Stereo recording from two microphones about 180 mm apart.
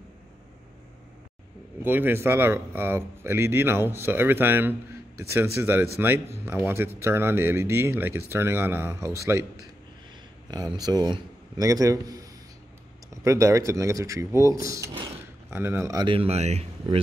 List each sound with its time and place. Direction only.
1.8 s a man's voice: 10° right (ahead or behind)
10.5 s a man's voice: 20° right (ahead or behind); by 17.0 s 35° right (ahead or behind)